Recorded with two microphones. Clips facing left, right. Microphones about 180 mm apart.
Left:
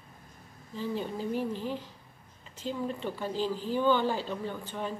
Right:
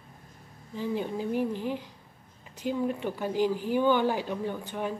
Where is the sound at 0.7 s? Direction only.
15° right (ahead or behind).